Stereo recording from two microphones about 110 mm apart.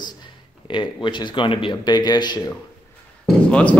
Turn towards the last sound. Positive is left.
turn(degrees=10)  # may be behind; listen again after turning